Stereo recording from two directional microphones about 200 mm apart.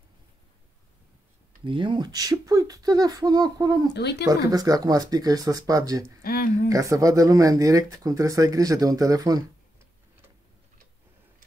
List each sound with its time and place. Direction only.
1.6 s speech: 25° right (ahead or behind)
3.9 s speech: 55° left (ahead or behind)
4.3 s speech: 20° right (ahead or behind)
6.2 s speech: 50° left (ahead or behind)
6.7 s speech: 15° right (ahead or behind)